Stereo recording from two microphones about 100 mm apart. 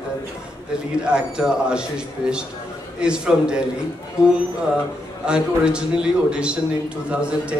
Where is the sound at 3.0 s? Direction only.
10° right (ahead or behind).